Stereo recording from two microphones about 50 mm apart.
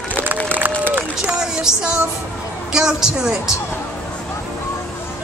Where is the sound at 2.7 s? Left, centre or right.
Centre.